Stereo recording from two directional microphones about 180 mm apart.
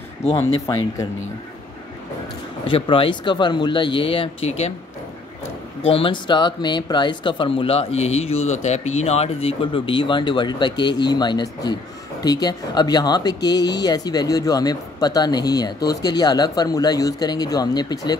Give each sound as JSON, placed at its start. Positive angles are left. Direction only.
{"t": 2.6, "sound": "speech", "side_deg": 30}
{"t": 5.8, "sound": "speech", "side_deg": 30}